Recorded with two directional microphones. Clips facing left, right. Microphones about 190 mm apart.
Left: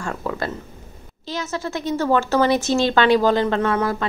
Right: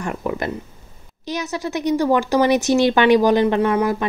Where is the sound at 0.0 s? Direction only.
20° right (ahead or behind).